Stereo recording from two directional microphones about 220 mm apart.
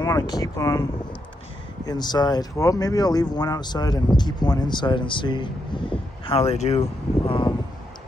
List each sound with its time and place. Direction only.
0.0 s speech: 15° left (ahead or behind)
1.9 s speech: 20° left (ahead or behind)